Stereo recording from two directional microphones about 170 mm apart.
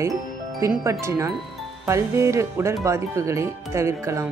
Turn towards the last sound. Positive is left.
turn(degrees=-15)  # may be behind; listen again after turning